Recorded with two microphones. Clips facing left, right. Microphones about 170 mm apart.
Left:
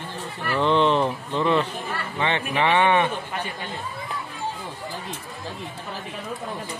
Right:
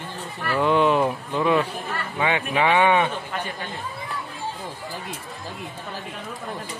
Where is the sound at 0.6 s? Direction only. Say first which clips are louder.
Right 1 dB; 10° right (ahead or behind).